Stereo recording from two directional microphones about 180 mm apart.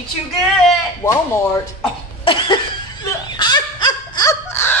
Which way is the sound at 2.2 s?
30° left (ahead or behind).